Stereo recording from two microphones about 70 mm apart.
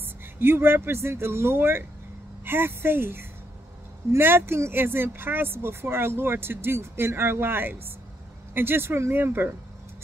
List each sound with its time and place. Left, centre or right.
0.0 s speech: right